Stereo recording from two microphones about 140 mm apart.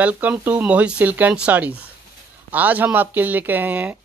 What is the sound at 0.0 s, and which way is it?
Speech, 10° right (ahead or behind).